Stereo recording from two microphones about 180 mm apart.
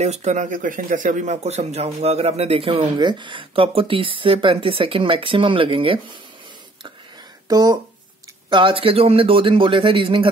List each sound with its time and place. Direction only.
0.0 s speech: 40° right (ahead or behind)
7.4 s speech: 20° right (ahead or behind)